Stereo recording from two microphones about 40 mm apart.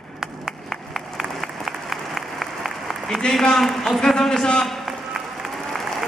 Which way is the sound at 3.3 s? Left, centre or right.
Centre.